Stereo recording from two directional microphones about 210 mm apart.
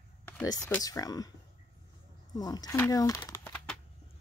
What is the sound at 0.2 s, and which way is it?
Speech, 10° left (ahead or behind).